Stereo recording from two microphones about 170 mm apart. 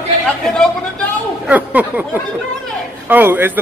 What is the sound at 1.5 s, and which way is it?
A man's voice, 10° right (ahead or behind).